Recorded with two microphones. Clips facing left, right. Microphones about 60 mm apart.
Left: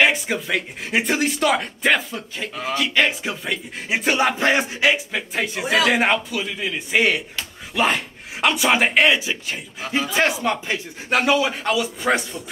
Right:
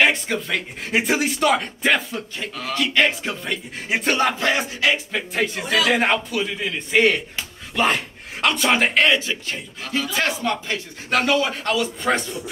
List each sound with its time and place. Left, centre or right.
0.0 s speech: centre
4.4 s a sound: left
4.9 s speech: centre